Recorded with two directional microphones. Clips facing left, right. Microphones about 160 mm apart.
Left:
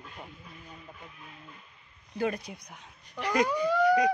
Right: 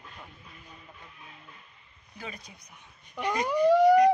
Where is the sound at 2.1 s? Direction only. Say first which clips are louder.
Left 12 dB; 60° left (ahead or behind); by 2.9 s 85° left.